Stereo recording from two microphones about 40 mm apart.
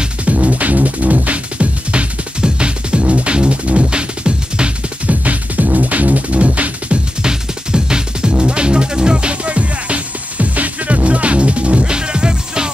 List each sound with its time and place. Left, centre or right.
0.0 s music: right
5.0 s music: right
7.2 s music: centre